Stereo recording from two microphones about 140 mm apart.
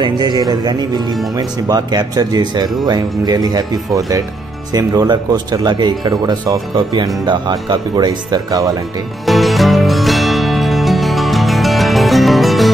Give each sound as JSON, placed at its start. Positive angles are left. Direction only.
{"t": 0.0, "sound": "speech", "side_deg": -30}
{"t": 9.2, "sound": "music", "side_deg": 0}